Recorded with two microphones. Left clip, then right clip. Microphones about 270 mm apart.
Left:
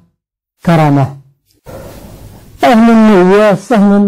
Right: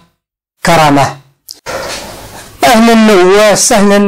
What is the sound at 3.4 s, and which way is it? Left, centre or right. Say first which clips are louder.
Speech: right 2 dB; right.